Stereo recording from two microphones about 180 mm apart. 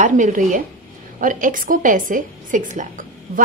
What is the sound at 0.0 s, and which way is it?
A woman's voice, 45° right (ahead or behind).